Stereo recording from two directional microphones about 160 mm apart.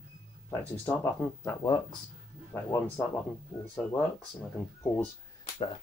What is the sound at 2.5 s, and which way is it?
Speech, 15° left (ahead or behind).